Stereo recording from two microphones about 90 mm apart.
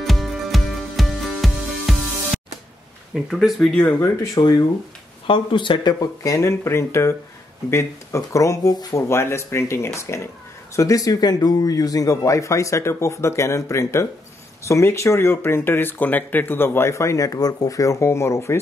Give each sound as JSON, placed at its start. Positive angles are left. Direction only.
{"t": 0.0, "sound": "music", "side_deg": 0}
{"t": 3.3, "sound": "speech", "side_deg": 0}
{"t": 3.8, "sound": "speech", "side_deg": 30}
{"t": 5.2, "sound": "speech", "side_deg": 70}
{"t": 5.9, "sound": "speech", "side_deg": 40}